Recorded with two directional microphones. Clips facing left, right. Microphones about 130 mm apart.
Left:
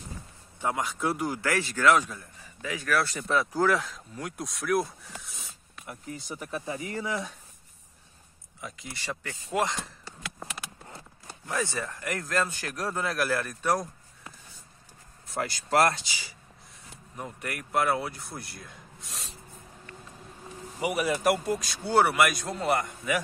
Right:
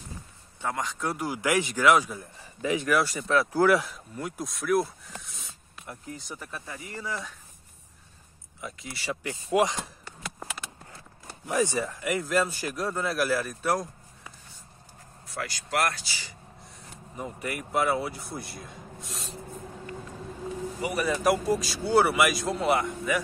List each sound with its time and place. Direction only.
0.6 s a man's voice: 10° left (ahead or behind)
1.4 s speech: 15° right (ahead or behind)
2.6 s speech: 20° right (ahead or behind); by 6.4 s 5° left (ahead or behind)
6.4 s speech: 20° left (ahead or behind)
8.5 s a man's voice: centre (ahead or behind)
11.4 s a man's voice: 15° right (ahead or behind)
15.3 s speech: 30° left (ahead or behind)
16.0 s speech: 15° left (ahead or behind)
17.2 s a man's voice: centre (ahead or behind)
19.0 s a sound: centre (ahead or behind)
20.8 s a man's voice: 10° left (ahead or behind)